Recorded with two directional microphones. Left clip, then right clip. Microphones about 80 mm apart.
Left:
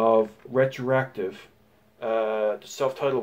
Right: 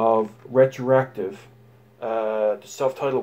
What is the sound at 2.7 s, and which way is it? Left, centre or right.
Speech, right.